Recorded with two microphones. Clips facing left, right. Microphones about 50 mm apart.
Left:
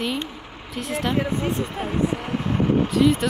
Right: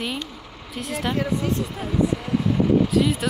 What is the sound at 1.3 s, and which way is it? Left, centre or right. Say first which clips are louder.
Speech: even; left.